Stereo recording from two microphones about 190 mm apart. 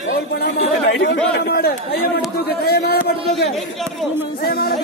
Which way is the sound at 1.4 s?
55° left (ahead or behind).